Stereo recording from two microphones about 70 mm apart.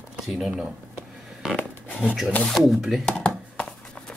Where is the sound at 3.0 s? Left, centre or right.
Centre.